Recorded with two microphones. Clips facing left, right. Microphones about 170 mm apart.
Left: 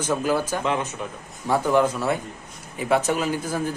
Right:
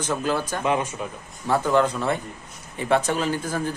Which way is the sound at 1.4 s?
10° left (ahead or behind).